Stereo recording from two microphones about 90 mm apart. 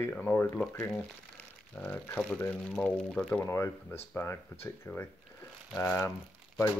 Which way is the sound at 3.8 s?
25° left (ahead or behind).